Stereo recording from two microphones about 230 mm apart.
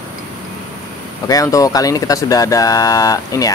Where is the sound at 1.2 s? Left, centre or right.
Centre.